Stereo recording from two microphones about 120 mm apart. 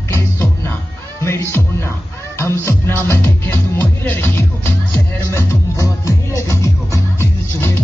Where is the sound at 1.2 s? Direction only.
20° left (ahead or behind).